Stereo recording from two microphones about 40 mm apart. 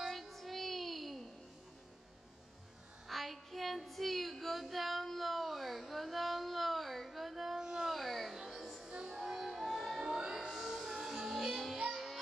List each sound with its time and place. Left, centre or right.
0.0 s child singing: centre
3.1 s child singing: centre
7.5 s a sound: centre
7.9 s music: centre
8.8 s music: centre
9.4 s music: centre
10.5 s music: centre